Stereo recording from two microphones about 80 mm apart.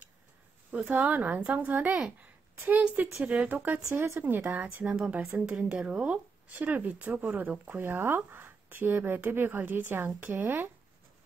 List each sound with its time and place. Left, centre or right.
0.7 s speech: centre
4.6 s speech: centre
6.5 s speech: right